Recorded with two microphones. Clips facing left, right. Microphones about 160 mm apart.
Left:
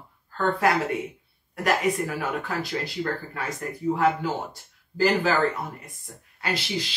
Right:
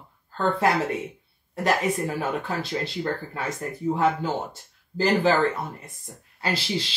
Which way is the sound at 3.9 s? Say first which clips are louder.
Even; 25° right (ahead or behind).